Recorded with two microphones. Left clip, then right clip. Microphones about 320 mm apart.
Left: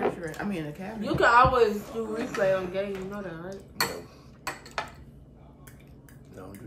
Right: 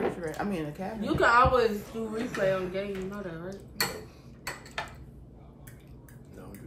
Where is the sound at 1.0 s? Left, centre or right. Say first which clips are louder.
Left 2 dB; centre.